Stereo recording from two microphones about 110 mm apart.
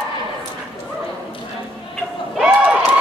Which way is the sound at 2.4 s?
10° right (ahead or behind).